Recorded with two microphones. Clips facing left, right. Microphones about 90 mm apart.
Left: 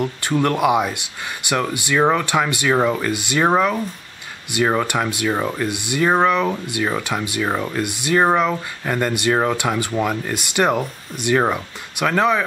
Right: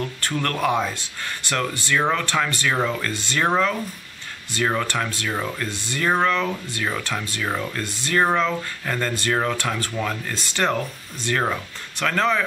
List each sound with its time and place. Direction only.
0.0 s speech: 15° left (ahead or behind)